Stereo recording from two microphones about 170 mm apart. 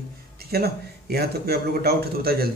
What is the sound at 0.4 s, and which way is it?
Speech, 65° right (ahead or behind).